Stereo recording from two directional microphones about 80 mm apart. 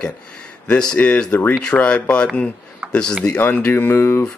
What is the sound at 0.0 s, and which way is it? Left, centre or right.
Speech, centre.